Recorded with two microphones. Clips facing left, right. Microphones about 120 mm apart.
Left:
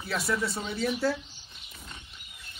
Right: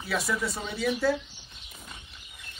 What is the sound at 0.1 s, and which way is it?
Speech, centre (ahead or behind).